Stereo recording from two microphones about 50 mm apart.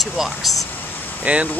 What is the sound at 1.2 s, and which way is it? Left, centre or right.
Speech, right.